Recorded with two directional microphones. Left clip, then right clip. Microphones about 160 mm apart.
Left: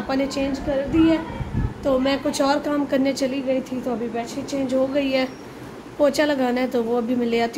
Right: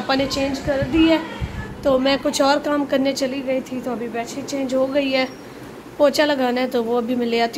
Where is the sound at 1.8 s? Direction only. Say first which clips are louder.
Right 3 dB; 10° right (ahead or behind); by 7.5 s 10° left (ahead or behind).